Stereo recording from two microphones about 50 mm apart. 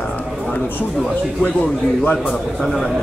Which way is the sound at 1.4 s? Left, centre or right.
Left.